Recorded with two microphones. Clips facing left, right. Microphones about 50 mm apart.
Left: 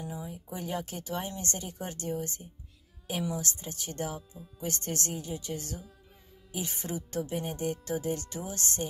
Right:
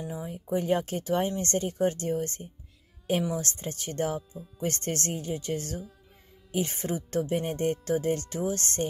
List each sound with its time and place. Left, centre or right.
0.1 s speech: right